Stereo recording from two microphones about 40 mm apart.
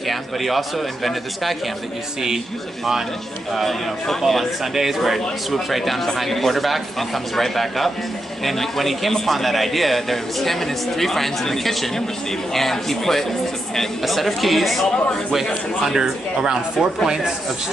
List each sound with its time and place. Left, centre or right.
0.1 s a man's voice: centre
3.5 s a man's voice: centre
4.7 s a man's voice: centre
15.9 s speech: centre